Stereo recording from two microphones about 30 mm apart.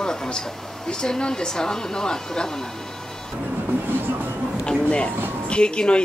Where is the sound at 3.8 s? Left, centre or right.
Right.